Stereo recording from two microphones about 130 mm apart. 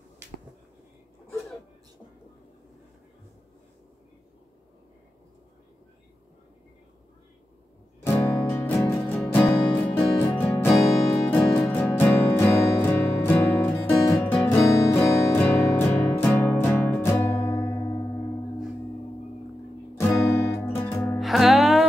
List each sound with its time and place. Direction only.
8.0 s music: 15° left (ahead or behind)
20.0 s music: 15° left (ahead or behind)
21.1 s music: centre (ahead or behind)